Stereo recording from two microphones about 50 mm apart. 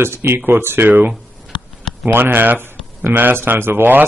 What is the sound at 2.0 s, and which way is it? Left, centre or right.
Speech, right.